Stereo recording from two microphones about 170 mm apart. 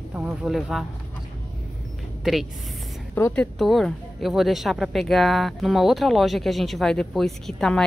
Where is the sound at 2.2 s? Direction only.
Centre (ahead or behind).